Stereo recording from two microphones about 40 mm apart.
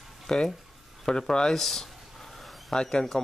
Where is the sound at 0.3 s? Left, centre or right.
Centre.